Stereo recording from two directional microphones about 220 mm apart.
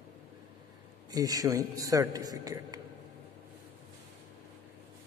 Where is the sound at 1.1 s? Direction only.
15° right (ahead or behind).